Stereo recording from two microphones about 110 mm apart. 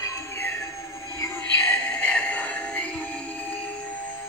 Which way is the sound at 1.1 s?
30° left (ahead or behind).